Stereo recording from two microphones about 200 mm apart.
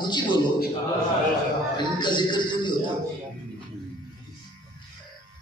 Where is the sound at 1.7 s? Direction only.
20° left (ahead or behind).